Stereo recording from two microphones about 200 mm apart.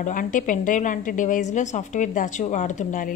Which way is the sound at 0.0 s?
40° left (ahead or behind).